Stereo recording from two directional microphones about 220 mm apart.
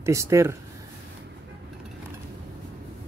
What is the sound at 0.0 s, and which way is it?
Speech, 15° right (ahead or behind).